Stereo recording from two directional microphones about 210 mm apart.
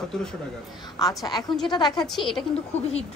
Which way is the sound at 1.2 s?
20° left (ahead or behind).